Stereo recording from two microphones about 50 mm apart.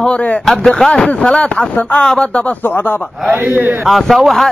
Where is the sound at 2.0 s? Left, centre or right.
Centre.